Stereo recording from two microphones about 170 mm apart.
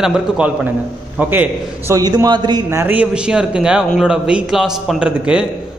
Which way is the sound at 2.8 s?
10° right (ahead or behind).